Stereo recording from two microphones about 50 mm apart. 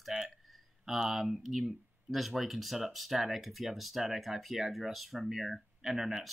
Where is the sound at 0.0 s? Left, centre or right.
Centre.